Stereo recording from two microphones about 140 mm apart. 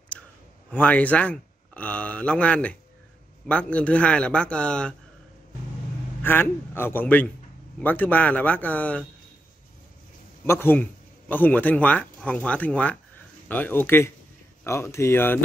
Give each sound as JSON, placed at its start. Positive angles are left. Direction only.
{"t": 0.2, "sound": "a sound", "side_deg": 5}
{"t": 0.7, "sound": "speech", "side_deg": 10}
{"t": 6.2, "sound": "speech", "side_deg": 15}
{"t": 10.4, "sound": "speech", "side_deg": 15}